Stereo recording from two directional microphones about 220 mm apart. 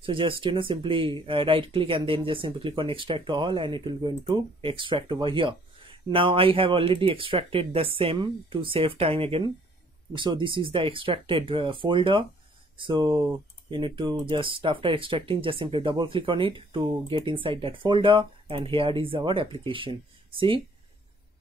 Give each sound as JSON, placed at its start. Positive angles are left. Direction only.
{"t": 0.0, "sound": "speech", "side_deg": -25}